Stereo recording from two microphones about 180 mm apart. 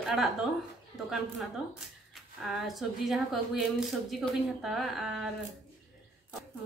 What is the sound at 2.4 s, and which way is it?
A woman's voice, centre (ahead or behind).